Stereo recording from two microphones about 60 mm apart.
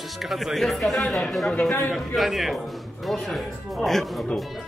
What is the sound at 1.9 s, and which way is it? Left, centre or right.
Speech, centre.